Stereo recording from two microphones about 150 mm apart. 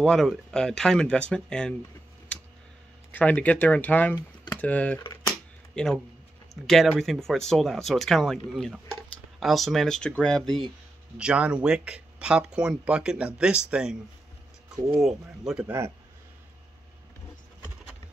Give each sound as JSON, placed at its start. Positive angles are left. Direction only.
{"t": 0.0, "sound": "speech", "side_deg": 5}
{"t": 3.1, "sound": "speech", "side_deg": 10}
{"t": 15.0, "sound": "speech", "side_deg": 0}